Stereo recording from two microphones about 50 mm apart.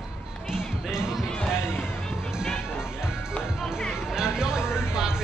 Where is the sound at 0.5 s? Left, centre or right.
Centre.